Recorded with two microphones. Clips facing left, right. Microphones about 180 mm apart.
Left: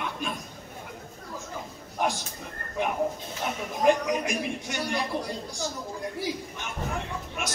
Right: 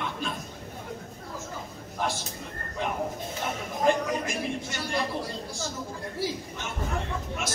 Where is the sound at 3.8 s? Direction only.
15° left (ahead or behind).